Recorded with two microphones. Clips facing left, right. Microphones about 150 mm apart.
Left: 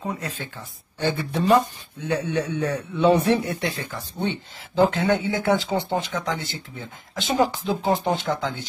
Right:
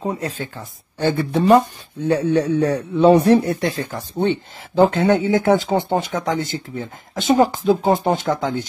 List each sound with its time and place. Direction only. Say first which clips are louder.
0.0 s speech: right 6 dB; 30° right (ahead or behind)
0.9 s a man's voice: right 6 dB; 50° right (ahead or behind)
2.0 s a man's voice: right 7 dB; 35° right (ahead or behind)